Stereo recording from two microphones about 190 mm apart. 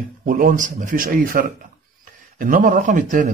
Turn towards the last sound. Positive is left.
turn(degrees=-45)  # may be behind; listen again after turning